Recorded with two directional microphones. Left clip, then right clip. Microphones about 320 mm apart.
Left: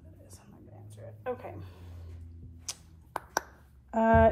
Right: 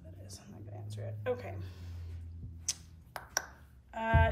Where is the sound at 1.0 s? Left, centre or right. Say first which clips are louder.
Even; centre.